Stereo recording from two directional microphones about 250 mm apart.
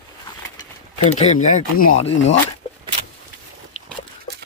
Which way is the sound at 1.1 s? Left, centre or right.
Left.